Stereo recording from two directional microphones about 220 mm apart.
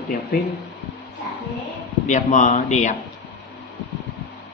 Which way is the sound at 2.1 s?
35° left (ahead or behind).